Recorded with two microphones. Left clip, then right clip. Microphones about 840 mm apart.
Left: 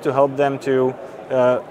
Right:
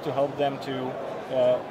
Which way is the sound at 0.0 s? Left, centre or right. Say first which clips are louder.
Left 9 dB; left.